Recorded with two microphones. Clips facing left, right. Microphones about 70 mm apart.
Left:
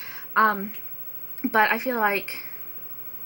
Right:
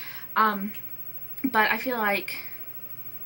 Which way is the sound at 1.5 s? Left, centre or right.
Left.